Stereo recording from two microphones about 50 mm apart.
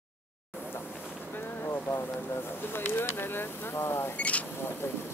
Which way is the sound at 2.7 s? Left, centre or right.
Left.